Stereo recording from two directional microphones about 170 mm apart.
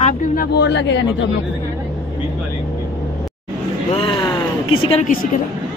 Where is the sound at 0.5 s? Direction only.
90° left.